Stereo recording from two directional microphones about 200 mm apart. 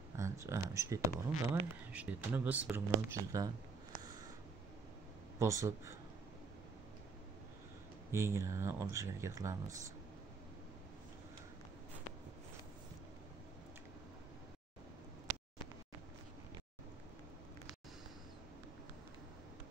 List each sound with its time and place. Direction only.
0.2 s speech: 15° right (ahead or behind)
5.4 s speech: 15° right (ahead or behind)
8.1 s speech: 15° right (ahead or behind)